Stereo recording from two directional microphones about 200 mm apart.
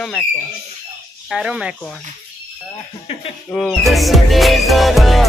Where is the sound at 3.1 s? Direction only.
30° left (ahead or behind).